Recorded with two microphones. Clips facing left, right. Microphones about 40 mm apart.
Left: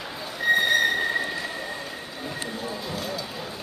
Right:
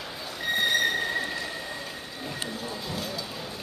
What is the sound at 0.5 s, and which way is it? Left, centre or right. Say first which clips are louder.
Train: left 7 dB; centre.